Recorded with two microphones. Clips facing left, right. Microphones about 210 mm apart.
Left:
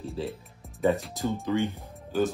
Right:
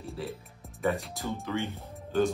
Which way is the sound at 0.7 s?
Centre (ahead or behind).